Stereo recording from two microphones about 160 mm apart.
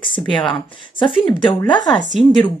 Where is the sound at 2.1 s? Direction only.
Centre (ahead or behind).